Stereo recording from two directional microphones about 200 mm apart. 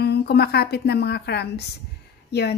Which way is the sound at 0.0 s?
55° left (ahead or behind).